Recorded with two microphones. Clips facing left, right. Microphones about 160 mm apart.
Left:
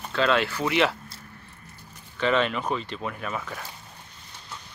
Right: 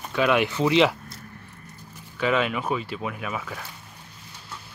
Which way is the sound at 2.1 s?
10° right (ahead or behind).